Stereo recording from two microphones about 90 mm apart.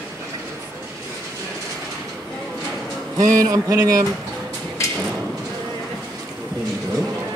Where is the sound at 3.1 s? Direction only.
40° right (ahead or behind).